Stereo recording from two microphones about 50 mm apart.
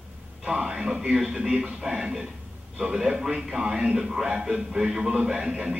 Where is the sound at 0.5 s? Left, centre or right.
Centre.